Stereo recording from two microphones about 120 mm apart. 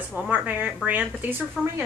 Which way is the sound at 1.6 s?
5° left (ahead or behind).